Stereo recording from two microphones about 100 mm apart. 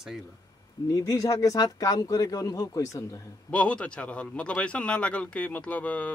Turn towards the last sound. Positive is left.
turn(degrees=15)  # may be behind; listen again after turning